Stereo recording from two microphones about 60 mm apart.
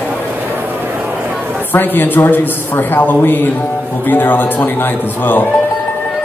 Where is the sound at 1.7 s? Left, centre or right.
Left.